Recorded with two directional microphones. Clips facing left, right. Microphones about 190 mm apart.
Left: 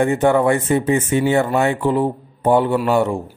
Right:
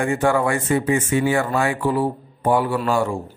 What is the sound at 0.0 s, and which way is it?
Speech, 20° left (ahead or behind).